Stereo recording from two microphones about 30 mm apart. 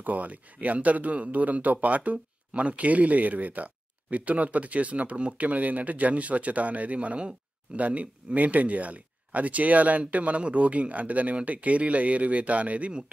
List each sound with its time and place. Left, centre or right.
0.0 s speech: right